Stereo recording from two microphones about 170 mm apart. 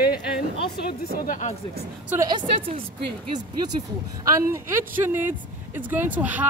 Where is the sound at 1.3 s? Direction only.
45° left (ahead or behind).